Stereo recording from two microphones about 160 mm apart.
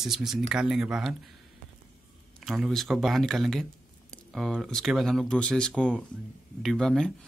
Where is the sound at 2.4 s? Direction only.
Centre (ahead or behind).